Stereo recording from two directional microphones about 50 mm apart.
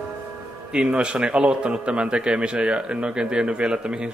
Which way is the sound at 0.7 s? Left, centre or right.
Right.